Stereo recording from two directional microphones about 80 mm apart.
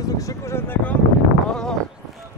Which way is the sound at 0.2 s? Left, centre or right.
Left.